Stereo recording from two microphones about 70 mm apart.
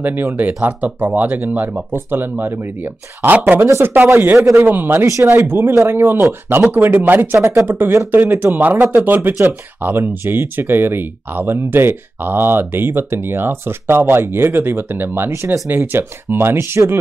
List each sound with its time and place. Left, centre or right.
0.0 s speech: right
3.8 s speech: right
4.4 s a man's voice: right
4.6 s speech: right
5.0 s a man's voice: right
5.3 s speech: right
7.4 s speech: right